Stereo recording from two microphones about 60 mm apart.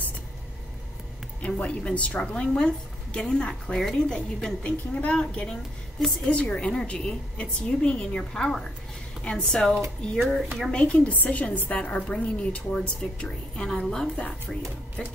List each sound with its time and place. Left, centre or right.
1.4 s a woman's voice: left
10.1 s speech: centre
10.7 s a woman's voice: left